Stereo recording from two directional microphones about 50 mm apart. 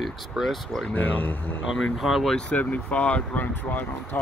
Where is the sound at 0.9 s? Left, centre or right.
Left.